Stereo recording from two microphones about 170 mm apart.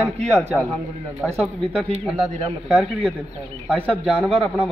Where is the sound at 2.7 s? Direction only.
Centre (ahead or behind).